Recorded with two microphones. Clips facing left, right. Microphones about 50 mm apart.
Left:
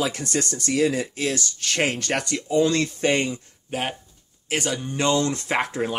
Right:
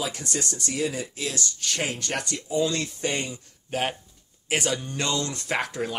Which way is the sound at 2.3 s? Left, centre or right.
Left.